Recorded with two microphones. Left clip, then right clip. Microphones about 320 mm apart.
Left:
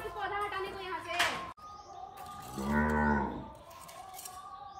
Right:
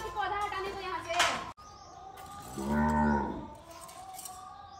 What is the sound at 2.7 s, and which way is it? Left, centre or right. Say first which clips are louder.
Moo: right 1 dB; left.